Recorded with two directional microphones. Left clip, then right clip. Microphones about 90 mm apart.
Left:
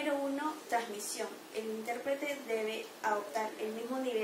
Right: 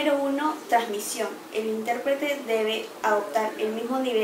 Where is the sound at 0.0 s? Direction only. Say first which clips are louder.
Right 11 dB; centre (ahead or behind).